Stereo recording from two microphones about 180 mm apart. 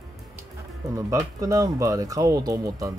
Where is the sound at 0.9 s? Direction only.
20° right (ahead or behind).